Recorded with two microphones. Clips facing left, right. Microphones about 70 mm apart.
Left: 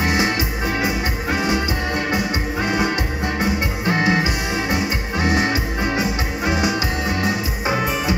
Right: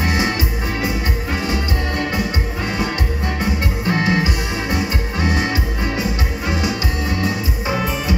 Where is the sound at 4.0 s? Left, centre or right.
Centre.